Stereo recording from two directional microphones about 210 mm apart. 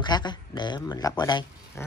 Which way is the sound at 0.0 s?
20° left (ahead or behind).